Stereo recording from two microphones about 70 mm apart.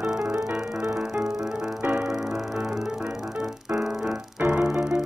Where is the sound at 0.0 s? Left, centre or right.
Right.